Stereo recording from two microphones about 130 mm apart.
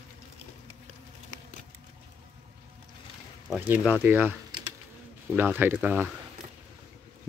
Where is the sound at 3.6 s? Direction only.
15° right (ahead or behind).